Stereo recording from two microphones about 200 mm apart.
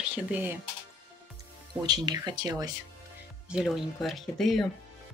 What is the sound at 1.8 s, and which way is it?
Speech, 20° right (ahead or behind).